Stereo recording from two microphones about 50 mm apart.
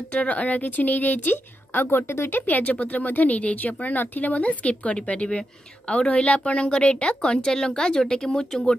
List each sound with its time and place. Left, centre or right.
0.1 s a woman's voice: left